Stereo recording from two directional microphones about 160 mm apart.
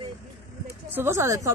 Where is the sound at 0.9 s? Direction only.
15° right (ahead or behind).